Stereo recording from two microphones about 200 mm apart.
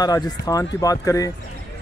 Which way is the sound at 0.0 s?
20° left (ahead or behind).